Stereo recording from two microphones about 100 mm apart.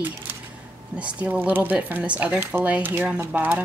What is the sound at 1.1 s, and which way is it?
Speech, 15° right (ahead or behind).